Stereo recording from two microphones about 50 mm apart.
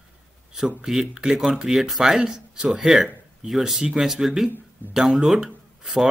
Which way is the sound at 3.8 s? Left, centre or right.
Centre.